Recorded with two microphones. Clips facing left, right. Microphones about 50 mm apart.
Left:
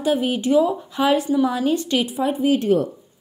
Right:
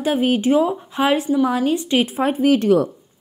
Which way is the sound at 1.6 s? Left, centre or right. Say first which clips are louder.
Right 1 dB; right.